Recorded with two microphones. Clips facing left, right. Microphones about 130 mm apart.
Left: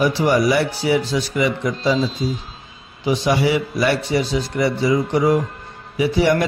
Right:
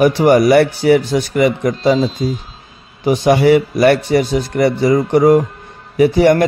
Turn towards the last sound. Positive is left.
turn(degrees=-50)  # may be behind; listen again after turning